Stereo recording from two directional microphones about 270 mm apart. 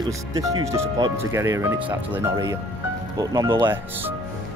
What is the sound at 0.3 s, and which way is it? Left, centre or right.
Speech, centre.